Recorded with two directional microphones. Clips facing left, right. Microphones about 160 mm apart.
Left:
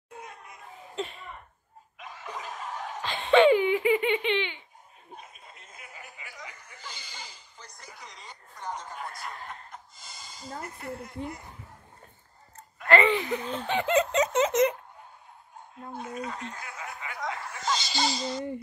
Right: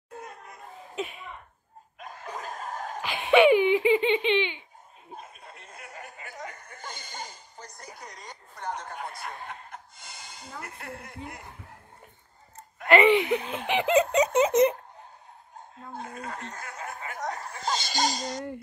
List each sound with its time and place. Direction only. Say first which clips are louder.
0.9 s speech: right 1 dB; 10° right (ahead or behind)
2.0 s a sound: right 1 dB; 45° right (ahead or behind)
3.0 s giggle: right 1 dB; 15° right (ahead or behind)
5.9 s chuckle: right 4 dB; 45° right (ahead or behind)
9.7 s speech: right 2 dB; 60° right (ahead or behind)
12.8 s speech: right 3 dB; 20° right (ahead or behind)
16.3 s laughter: even; 45° right (ahead or behind)